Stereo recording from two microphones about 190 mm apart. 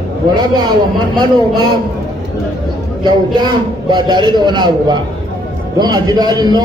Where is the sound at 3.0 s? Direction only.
20° right (ahead or behind).